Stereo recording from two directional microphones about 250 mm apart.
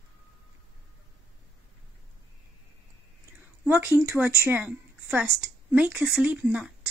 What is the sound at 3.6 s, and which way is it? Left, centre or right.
A woman's voice, centre.